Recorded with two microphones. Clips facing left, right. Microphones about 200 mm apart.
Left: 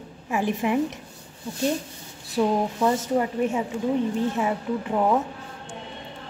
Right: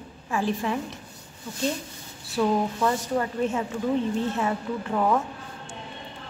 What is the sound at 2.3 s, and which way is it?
A woman's voice, 15° left (ahead or behind).